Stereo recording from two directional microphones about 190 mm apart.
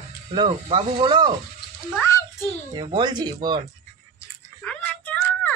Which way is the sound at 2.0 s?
15° left (ahead or behind).